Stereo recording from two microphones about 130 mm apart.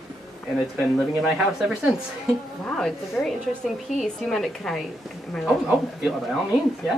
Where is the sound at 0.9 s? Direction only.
Centre (ahead or behind).